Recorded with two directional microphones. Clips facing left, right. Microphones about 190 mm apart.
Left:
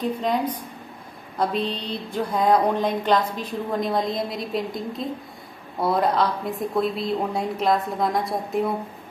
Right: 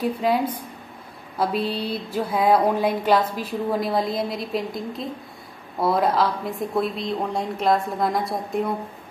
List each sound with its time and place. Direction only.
0.0 s a woman's voice: 5° right (ahead or behind)